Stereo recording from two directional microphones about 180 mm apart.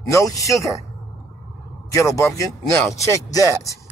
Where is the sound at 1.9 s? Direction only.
15° left (ahead or behind).